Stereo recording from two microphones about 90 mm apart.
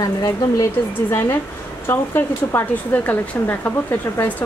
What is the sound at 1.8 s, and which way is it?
A woman's voice, 25° left (ahead or behind).